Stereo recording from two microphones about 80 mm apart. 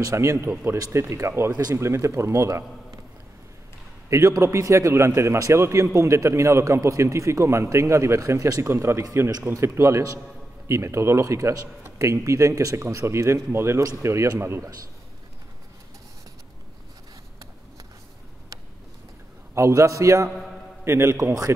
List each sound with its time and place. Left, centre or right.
0.0 s a man's voice: right
4.1 s a man's voice: right
19.5 s a man's voice: right
20.2 s a man's voice: centre
20.8 s a man's voice: right
21.2 s a man's voice: right